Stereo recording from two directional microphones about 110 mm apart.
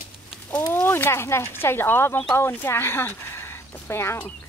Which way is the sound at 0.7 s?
20° left (ahead or behind).